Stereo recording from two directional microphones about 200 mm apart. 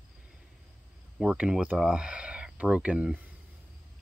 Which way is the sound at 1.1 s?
5° right (ahead or behind).